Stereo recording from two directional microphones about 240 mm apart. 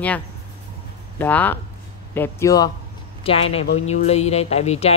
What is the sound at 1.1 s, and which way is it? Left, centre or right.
Speech, centre.